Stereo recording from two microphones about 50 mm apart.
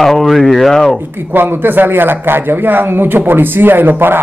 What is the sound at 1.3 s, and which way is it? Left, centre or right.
A man's voice, right.